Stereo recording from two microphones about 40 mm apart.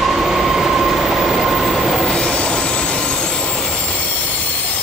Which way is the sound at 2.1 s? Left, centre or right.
Left.